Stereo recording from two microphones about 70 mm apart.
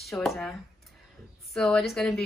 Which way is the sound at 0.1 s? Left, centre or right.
Left.